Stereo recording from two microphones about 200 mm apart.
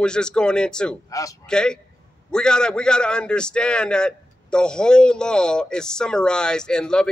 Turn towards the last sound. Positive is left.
turn(degrees=5)  # may be behind; listen again after turning